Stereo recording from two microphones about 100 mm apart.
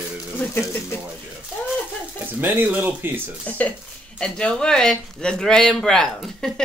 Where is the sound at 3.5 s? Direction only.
15° left (ahead or behind).